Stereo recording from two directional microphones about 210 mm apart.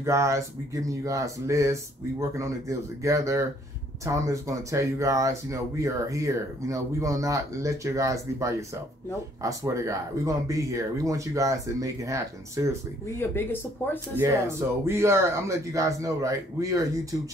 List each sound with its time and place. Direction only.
0.0 s speech: 15° right (ahead or behind)
13.2 s speech: 10° left (ahead or behind)
14.1 s speech: 10° right (ahead or behind)